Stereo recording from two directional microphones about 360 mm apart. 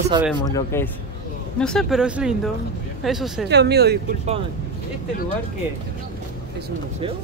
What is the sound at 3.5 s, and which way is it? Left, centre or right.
Speech, right.